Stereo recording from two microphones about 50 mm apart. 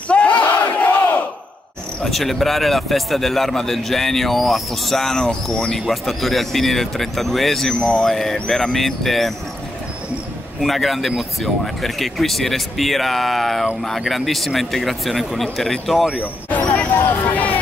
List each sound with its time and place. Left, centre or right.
0.1 s battle cry: left
2.0 s a man's voice: centre
10.6 s a man's voice: centre
16.4 s hubbub: left